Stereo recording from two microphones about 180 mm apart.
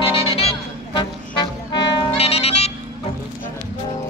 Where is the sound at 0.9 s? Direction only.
25° left (ahead or behind).